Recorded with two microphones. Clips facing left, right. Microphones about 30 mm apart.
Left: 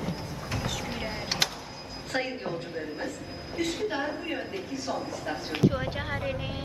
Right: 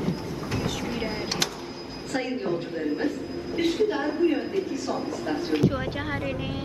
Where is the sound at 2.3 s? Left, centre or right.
Centre.